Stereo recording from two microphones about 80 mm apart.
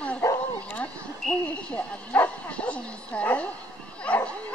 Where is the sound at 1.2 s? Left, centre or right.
Centre.